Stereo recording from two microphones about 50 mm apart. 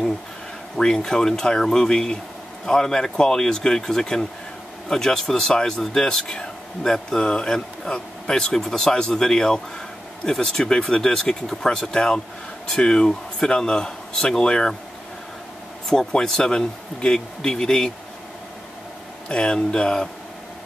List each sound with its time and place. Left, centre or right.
0.7 s speech: centre
15.9 s speech: centre
19.2 s speech: centre